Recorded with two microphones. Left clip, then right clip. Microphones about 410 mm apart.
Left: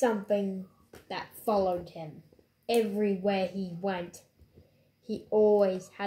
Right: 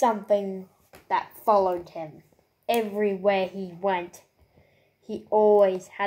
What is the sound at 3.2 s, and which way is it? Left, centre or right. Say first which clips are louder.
Speech: right 6 dB; centre.